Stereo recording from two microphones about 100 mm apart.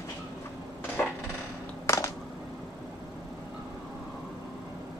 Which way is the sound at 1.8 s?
35° left (ahead or behind).